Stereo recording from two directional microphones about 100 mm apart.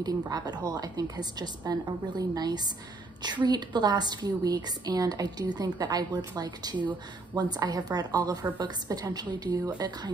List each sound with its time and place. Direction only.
0.0 s a woman's voice: 45° right (ahead or behind)